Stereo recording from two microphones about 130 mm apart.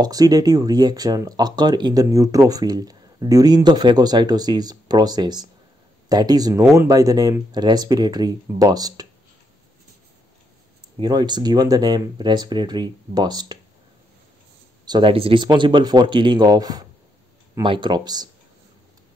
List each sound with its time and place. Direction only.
0.0 s speech: 30° right (ahead or behind)
11.0 s speech: 30° right (ahead or behind)
14.9 s speech: 40° right (ahead or behind)